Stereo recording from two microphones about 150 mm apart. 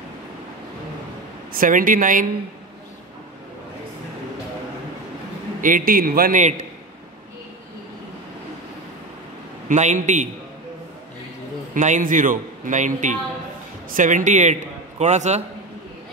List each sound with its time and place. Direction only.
1.5 s a man's voice: 65° right (ahead or behind)
5.6 s a man's voice: 60° right (ahead or behind)
9.7 s a man's voice: 55° right (ahead or behind)
11.7 s a man's voice: 60° right (ahead or behind)